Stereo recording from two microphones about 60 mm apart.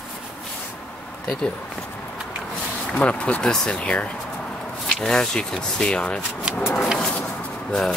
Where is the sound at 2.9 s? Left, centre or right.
Left.